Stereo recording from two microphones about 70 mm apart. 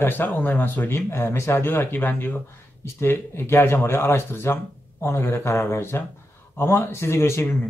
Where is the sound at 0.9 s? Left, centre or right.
Left.